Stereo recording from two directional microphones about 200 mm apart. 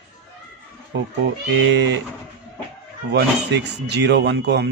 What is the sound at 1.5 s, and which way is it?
Speech, 60° right (ahead or behind).